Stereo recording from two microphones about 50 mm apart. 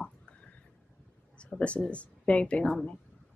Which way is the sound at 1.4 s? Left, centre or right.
Left.